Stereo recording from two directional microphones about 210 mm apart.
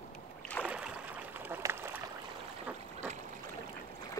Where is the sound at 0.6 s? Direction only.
5° right (ahead or behind).